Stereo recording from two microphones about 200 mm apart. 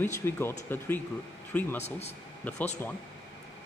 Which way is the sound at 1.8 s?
30° left (ahead or behind).